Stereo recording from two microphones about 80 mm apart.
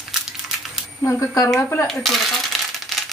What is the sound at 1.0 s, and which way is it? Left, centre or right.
Speech, left.